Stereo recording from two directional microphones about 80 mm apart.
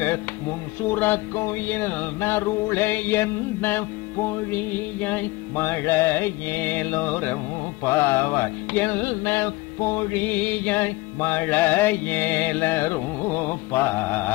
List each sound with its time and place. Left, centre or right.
0.8 s music: left